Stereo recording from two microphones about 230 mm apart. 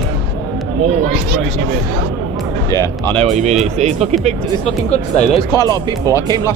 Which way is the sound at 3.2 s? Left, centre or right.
Right.